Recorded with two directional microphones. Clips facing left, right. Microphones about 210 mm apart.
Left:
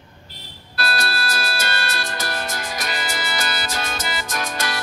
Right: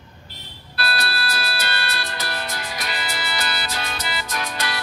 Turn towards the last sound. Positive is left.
turn(degrees=45)  # may be behind; listen again after turning